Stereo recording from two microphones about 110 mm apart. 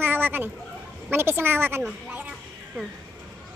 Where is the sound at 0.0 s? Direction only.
20° right (ahead or behind).